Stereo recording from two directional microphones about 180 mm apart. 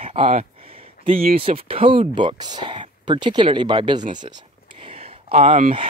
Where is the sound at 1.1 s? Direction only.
55° right (ahead or behind).